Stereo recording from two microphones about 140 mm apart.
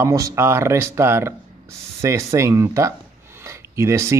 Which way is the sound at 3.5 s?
20° right (ahead or behind).